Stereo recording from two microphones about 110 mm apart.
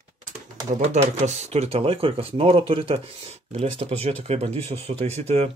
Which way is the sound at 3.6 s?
75° right (ahead or behind).